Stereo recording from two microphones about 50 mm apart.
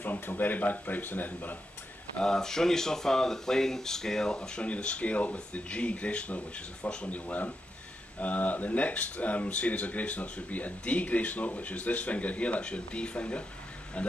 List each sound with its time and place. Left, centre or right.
0.0 s speech: left
2.1 s speech: centre